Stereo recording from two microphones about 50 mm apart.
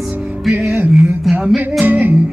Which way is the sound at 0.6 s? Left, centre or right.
Right.